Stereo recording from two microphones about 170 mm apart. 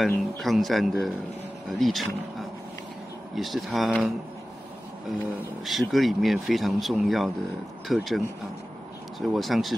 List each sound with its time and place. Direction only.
0.0 s speech: centre (ahead or behind)
3.3 s speech: centre (ahead or behind)
5.7 s speech: centre (ahead or behind)
9.2 s speech: centre (ahead or behind)